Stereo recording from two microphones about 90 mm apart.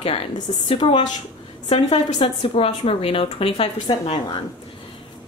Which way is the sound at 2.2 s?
90° left.